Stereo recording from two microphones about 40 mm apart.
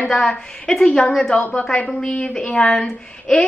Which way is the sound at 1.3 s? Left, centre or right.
Left.